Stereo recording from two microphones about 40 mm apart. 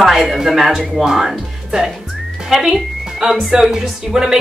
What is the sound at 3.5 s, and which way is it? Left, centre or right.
Speech, centre.